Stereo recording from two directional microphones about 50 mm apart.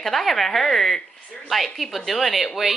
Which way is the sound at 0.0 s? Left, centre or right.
Centre.